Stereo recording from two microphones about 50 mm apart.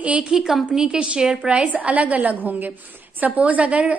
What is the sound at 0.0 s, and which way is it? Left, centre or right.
Speech, right.